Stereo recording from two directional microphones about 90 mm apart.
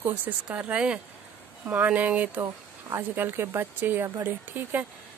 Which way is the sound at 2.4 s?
35° right (ahead or behind).